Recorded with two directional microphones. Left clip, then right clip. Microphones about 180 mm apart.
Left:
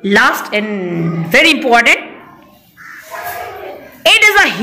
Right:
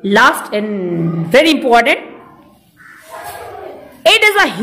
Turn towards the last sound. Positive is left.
turn(degrees=-10)  # may be behind; listen again after turning